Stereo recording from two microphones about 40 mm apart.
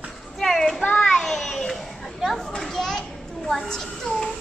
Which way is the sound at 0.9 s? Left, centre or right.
Left.